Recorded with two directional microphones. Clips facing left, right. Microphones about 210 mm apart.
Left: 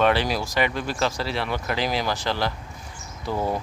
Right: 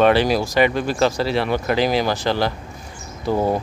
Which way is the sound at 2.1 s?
40° right (ahead or behind).